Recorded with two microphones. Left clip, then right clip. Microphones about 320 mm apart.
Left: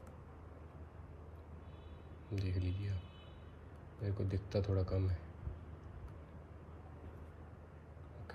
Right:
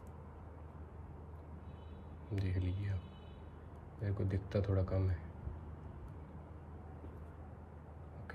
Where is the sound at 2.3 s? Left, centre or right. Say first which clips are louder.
Right 1 dB; centre.